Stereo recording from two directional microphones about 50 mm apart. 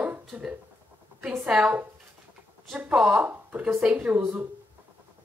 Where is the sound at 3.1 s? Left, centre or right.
Right.